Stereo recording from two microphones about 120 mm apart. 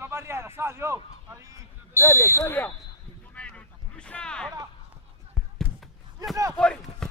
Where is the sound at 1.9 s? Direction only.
25° left (ahead or behind).